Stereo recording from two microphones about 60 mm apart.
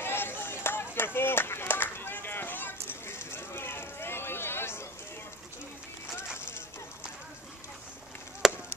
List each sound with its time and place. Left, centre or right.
0.0 s run: left
8.4 s chop: centre